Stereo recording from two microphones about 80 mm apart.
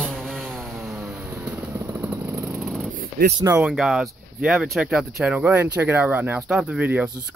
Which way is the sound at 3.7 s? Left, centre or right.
Centre.